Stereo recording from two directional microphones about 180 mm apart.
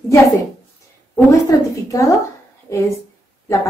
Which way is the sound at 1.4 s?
15° left (ahead or behind).